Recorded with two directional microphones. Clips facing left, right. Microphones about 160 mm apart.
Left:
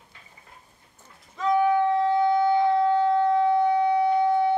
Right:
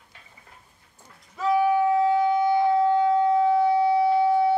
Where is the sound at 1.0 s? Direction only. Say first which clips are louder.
Even; 10° right (ahead or behind).